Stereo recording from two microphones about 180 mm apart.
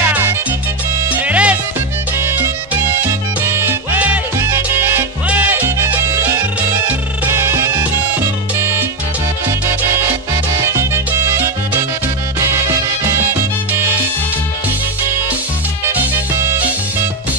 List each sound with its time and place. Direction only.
0.0 s music: 10° right (ahead or behind)
9.7 s salsa music: 15° right (ahead or behind)
12.4 s music: 15° right (ahead or behind)
15.9 s music: 10° right (ahead or behind)